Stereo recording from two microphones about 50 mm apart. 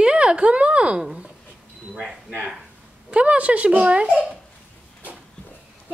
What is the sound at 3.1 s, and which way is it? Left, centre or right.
A woman's voice, right.